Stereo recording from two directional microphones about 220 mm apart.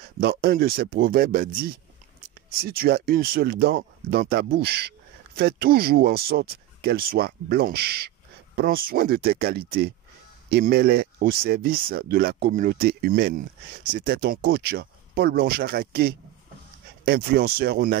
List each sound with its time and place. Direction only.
0.2 s speech: 45° right (ahead or behind)